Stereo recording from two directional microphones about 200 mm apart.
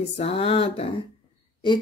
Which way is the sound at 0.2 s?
30° left (ahead or behind).